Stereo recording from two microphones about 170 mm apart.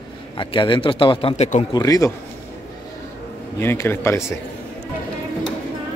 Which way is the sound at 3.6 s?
15° left (ahead or behind).